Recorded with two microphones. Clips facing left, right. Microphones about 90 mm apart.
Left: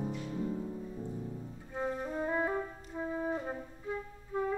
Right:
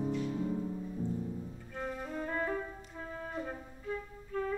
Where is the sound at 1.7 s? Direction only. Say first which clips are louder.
Left 4 dB; 20° left (ahead or behind).